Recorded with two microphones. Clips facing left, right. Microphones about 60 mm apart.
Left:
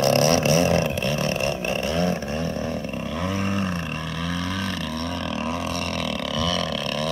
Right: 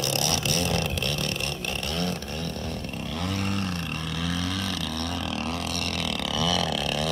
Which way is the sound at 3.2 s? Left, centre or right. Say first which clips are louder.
Left 4 dB; centre.